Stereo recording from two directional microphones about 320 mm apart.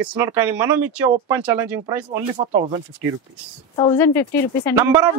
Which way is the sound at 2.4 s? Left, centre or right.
Centre.